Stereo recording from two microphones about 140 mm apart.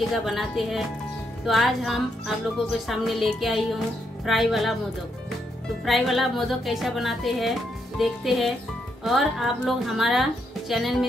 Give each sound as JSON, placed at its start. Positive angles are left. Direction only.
{"t": 0.1, "sound": "speech", "side_deg": 0}
{"t": 5.9, "sound": "speech", "side_deg": 0}